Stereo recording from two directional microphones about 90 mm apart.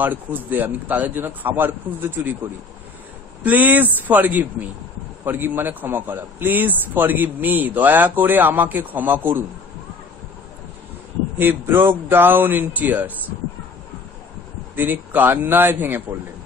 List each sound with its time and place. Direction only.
0.0 s a man's voice: 20° right (ahead or behind)
3.4 s a man's voice: 20° right (ahead or behind)
11.3 s a man's voice: 25° right (ahead or behind)
14.8 s a man's voice: 20° right (ahead or behind)